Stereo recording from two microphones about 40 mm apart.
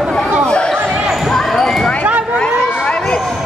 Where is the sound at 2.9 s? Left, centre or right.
Left.